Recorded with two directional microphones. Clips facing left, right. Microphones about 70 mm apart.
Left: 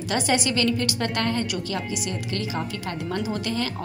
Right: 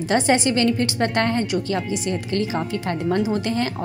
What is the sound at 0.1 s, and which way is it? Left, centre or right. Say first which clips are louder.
A woman's voice: right 5 dB; right.